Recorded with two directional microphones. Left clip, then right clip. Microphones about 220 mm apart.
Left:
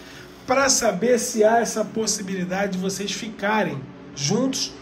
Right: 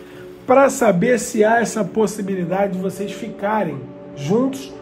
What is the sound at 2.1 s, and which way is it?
A man's voice, 10° right (ahead or behind).